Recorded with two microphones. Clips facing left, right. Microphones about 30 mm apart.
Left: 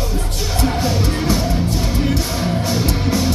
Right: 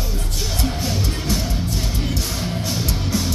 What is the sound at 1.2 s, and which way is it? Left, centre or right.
Music, centre.